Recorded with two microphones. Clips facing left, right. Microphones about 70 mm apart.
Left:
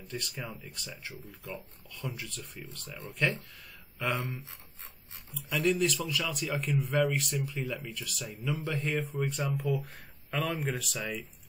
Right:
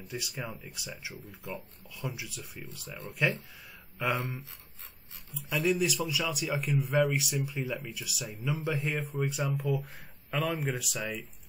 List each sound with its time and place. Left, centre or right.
0.1 s speech: centre
1.1 s speech: right
2.0 s speech: centre
4.2 s speech: right
5.3 s speech: centre